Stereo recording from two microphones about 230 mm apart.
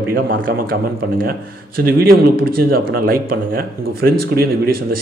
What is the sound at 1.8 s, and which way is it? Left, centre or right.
Speech, right.